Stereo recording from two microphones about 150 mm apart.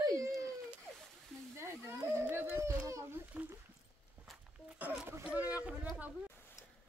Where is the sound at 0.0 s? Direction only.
20° right (ahead or behind).